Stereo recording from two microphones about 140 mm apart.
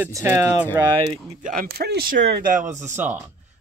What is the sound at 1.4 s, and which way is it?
Speech, 75° right (ahead or behind).